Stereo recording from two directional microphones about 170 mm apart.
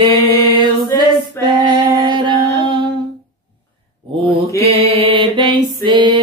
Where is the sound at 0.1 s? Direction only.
30° right (ahead or behind).